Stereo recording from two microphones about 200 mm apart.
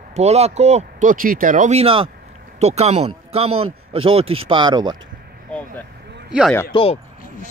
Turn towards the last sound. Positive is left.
turn(degrees=25)  # may be behind; listen again after turning